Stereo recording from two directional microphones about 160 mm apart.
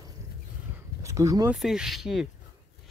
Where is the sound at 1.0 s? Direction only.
20° right (ahead or behind).